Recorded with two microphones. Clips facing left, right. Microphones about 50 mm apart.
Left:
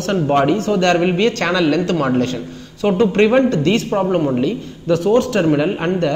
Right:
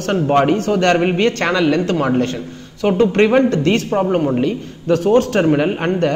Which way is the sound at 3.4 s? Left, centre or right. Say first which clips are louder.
Even; right.